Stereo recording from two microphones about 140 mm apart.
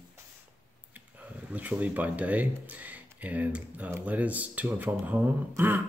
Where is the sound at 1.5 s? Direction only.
10° right (ahead or behind).